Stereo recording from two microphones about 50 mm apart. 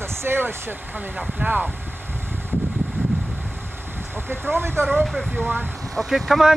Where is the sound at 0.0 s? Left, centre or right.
Right.